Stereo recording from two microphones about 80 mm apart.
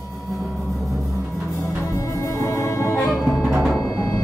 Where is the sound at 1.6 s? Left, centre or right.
Left.